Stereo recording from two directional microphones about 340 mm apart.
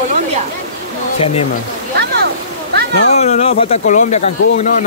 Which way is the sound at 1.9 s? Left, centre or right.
Right.